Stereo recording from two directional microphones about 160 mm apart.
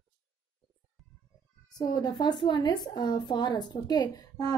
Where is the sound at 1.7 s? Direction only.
25° left (ahead or behind).